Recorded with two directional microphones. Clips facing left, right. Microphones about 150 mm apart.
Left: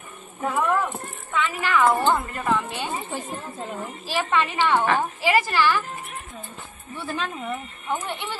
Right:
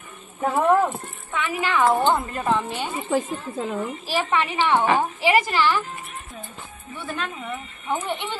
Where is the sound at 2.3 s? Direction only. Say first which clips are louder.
Right 1 dB; 30° right (ahead or behind).